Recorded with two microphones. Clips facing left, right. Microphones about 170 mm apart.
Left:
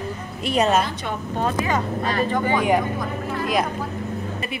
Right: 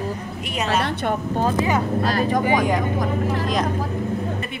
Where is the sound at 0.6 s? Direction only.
70° right (ahead or behind).